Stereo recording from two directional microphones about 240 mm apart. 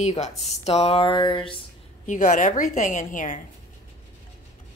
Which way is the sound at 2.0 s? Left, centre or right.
Left.